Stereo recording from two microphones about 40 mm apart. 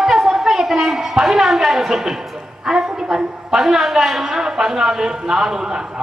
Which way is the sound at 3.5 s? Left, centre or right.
Centre.